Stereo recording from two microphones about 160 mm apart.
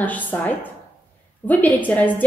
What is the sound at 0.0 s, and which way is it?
Speech, 10° left (ahead or behind).